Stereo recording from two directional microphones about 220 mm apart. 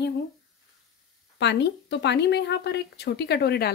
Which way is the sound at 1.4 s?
50° left (ahead or behind).